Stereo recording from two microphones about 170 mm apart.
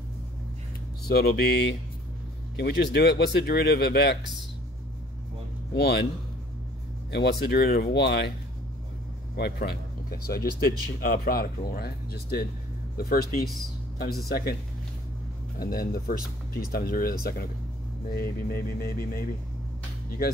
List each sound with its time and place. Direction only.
1.0 s speech: 70° left (ahead or behind)
5.8 s speech: 70° left (ahead or behind)
7.1 s speech: 75° left (ahead or behind)
9.4 s speech: 65° left (ahead or behind)
15.6 s speech: 60° left (ahead or behind)